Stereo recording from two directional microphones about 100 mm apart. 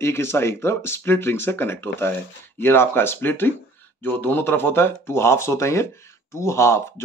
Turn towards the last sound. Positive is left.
turn(degrees=25)  # may be behind; listen again after turning